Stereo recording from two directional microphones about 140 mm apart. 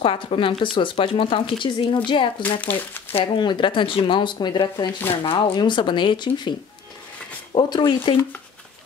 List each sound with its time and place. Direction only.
0.0 s speech: 40° left (ahead or behind)
2.4 s speech: 10° left (ahead or behind)
3.1 s speech: 35° left (ahead or behind)
7.5 s speech: 35° left (ahead or behind)